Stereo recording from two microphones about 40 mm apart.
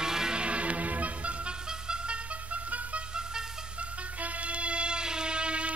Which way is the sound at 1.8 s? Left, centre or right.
Right.